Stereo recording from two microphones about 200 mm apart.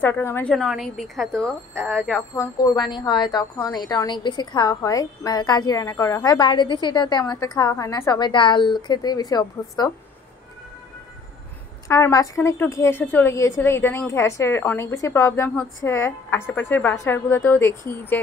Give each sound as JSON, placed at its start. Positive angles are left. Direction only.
{"t": 0.0, "sound": "a woman's voice", "side_deg": 10}
{"t": 1.8, "sound": "speech", "side_deg": -10}
{"t": 2.0, "sound": "a woman's voice", "side_deg": 10}
{"t": 11.9, "sound": "a woman's voice", "side_deg": 15}